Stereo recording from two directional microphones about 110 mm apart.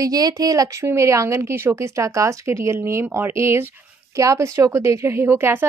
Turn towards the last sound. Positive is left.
turn(degrees=-20)  # may be behind; listen again after turning